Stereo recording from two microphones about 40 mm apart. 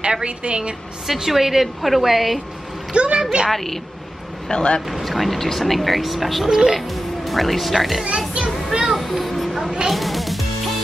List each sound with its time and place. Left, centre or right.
0.0 s a woman's voice: right
1.0 s a woman's voice: centre
2.9 s a woman's voice: right
3.4 s speech: centre
4.5 s speech: centre
5.0 s speech: centre
8.8 s a sound: centre
9.8 s music: centre